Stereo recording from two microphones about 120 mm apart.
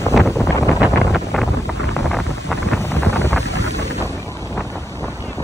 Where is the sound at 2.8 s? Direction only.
20° left (ahead or behind).